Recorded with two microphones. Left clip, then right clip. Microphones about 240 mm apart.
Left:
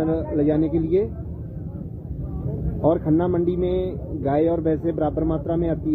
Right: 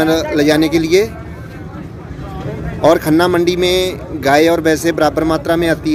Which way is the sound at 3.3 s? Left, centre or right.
Centre.